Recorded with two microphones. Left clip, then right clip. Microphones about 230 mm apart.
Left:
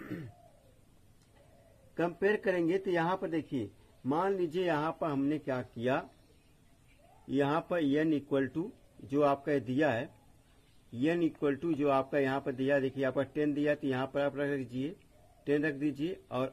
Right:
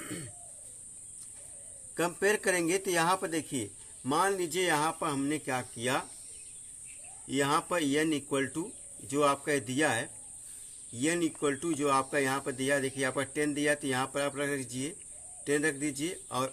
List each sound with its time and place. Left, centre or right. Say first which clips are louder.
2.0 s speech: right 2 dB; centre
7.2 s speech: right 2 dB; centre